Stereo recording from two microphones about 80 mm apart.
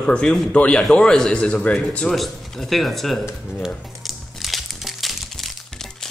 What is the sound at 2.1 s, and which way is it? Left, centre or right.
Speech, centre.